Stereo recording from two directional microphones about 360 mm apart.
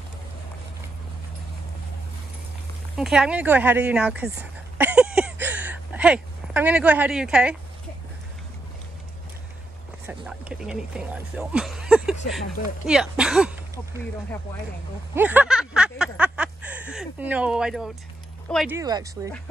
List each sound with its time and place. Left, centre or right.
3.0 s speech: centre
10.0 s speech: centre
12.2 s speech: left
12.8 s speech: centre
15.1 s a sound: centre
18.5 s speech: centre